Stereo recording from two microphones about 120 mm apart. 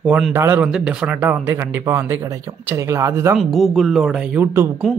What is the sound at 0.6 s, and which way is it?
Speech, 5° right (ahead or behind).